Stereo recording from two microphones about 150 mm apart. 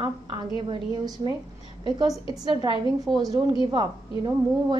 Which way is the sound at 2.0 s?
30° right (ahead or behind).